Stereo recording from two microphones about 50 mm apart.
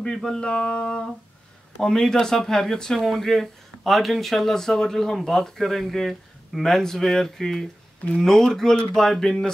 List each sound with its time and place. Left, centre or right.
0.0 s speech: centre